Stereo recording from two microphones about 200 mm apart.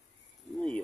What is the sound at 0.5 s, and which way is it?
Speech, 5° left (ahead or behind).